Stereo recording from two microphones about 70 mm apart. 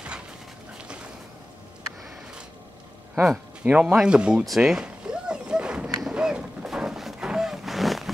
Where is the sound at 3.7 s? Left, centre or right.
Centre.